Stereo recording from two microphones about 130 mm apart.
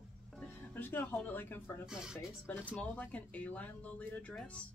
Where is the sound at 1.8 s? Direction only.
5° right (ahead or behind).